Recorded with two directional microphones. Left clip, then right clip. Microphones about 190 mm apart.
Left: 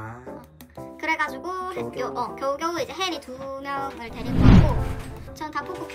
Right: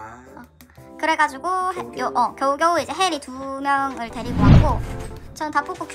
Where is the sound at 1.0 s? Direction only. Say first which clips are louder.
Right 6 dB; 25° right (ahead or behind).